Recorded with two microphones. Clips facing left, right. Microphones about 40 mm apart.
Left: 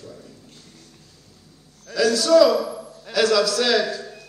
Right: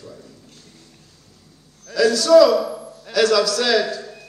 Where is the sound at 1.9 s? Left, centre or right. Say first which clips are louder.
Right 3 dB; centre.